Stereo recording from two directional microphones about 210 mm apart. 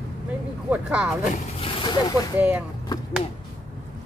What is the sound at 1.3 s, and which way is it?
Speech, 25° left (ahead or behind).